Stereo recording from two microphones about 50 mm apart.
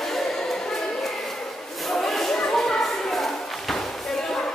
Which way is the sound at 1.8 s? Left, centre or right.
Centre.